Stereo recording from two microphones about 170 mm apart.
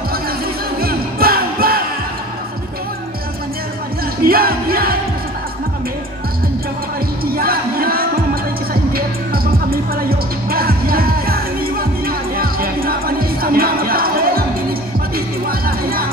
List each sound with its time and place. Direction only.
0.7 s music: 60° right (ahead or behind)
4.2 s music: 60° right (ahead or behind)
7.2 s music: 60° right (ahead or behind)